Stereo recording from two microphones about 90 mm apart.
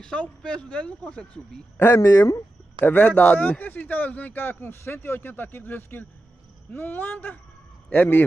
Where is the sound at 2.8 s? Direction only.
20° left (ahead or behind).